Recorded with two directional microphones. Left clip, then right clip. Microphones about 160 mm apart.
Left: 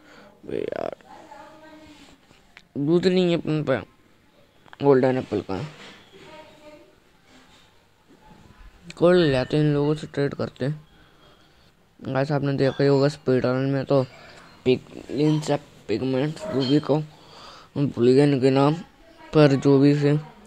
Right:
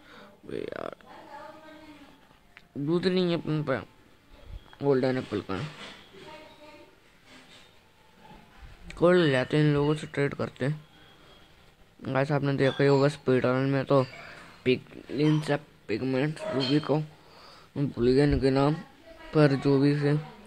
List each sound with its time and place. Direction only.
0.1 s a sound: 10° left (ahead or behind)
2.5 s speech: 15° left (ahead or behind)
8.8 s speech: 10° left (ahead or behind)
12.0 s speech: 5° left (ahead or behind)
14.6 s speech: 20° left (ahead or behind)